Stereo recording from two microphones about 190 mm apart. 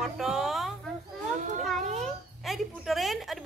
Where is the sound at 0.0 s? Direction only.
Centre (ahead or behind).